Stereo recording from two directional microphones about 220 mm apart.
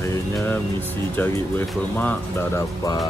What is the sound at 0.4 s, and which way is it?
Speech, 10° left (ahead or behind).